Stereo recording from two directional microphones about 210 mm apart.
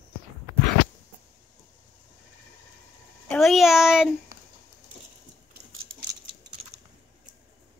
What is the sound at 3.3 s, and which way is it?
Speech, centre (ahead or behind).